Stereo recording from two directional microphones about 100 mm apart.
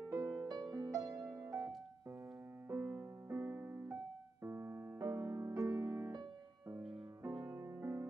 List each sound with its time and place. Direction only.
0.1 s music: 30° right (ahead or behind)
0.5 s music: 40° right (ahead or behind)
2.7 s music: 25° right (ahead or behind)
7.4 s music: 25° right (ahead or behind)